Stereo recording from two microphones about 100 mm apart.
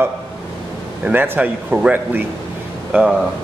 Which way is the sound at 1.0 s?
20° right (ahead or behind).